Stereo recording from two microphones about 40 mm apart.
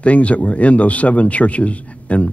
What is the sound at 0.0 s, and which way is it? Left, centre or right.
Speech, left.